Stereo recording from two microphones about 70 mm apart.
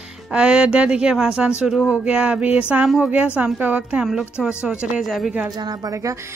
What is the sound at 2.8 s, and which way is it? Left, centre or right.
Speech, centre.